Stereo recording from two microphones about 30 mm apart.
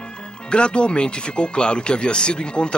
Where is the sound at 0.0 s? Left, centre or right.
Left.